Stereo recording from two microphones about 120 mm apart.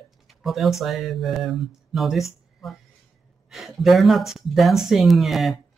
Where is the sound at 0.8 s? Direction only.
Centre (ahead or behind).